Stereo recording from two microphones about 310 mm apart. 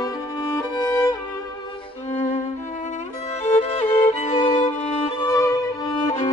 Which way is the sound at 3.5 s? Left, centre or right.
Centre.